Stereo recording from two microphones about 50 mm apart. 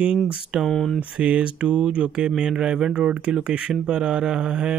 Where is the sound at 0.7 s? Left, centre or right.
Centre.